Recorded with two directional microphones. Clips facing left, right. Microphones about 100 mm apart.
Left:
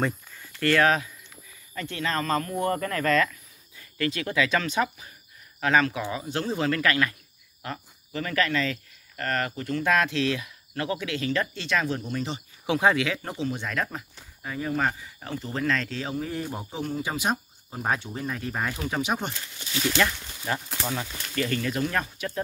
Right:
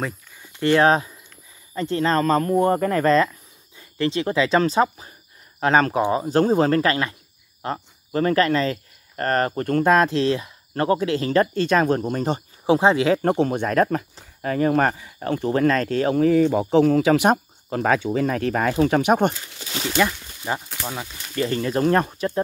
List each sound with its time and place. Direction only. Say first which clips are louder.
0.4 s a sound: right 5 dB; 20° right (ahead or behind)
0.8 s speech: right 6 dB; 30° right (ahead or behind)
13.2 s speech: right 11 dB; 55° right (ahead or behind)
14.4 s speech: right 8 dB; 65° right (ahead or behind)
20.0 s speech: right 8 dB; 20° right (ahead or behind)
21.4 s speech: right 5 dB; 30° right (ahead or behind)